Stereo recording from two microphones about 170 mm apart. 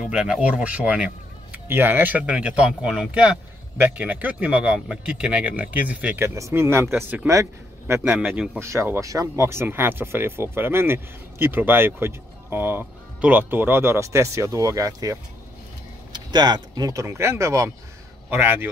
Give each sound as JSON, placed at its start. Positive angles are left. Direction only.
{"t": 0.0, "sound": "speech", "side_deg": -5}